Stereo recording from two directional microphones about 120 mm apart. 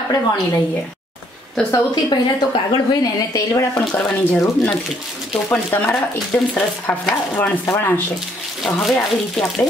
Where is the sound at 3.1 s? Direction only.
30° left (ahead or behind).